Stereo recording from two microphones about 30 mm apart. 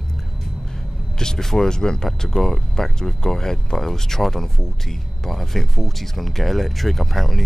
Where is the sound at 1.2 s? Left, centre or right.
Left.